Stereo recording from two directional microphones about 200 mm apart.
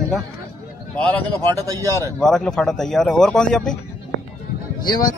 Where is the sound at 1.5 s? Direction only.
15° right (ahead or behind).